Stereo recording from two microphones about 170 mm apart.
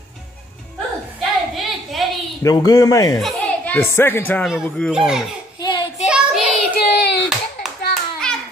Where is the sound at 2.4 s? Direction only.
20° left (ahead or behind).